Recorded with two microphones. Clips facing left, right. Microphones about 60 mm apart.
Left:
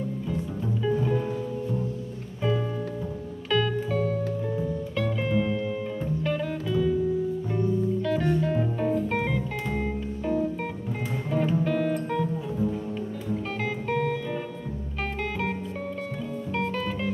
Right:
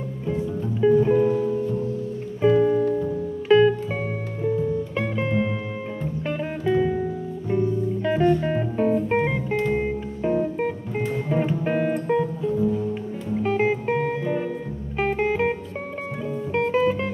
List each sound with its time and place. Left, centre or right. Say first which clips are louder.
0.3 s music: right 8 dB; right
2.4 s music: right 10 dB; right
13.4 s music: right 9 dB; right
16.5 s music: right 9 dB; right